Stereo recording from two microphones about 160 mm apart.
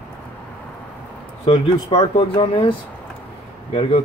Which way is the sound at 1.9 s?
35° left (ahead or behind).